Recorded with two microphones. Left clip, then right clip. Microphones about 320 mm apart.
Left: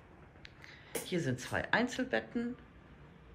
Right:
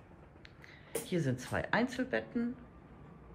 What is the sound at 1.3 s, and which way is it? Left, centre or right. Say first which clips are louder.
A man's voice: left 2 dB; centre.